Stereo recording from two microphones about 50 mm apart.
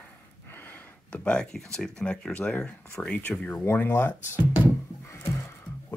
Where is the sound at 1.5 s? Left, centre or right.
Centre.